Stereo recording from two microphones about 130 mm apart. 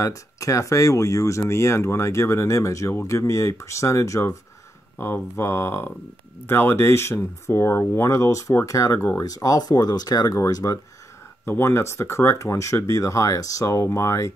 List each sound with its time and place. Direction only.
0.0 s speech: 25° left (ahead or behind)